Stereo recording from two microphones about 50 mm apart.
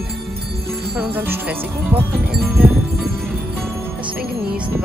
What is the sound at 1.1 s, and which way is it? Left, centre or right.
Speech, right.